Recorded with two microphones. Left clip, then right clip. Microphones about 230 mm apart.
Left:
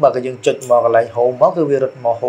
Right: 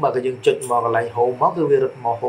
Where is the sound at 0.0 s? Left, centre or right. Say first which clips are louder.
Left 4 dB; left.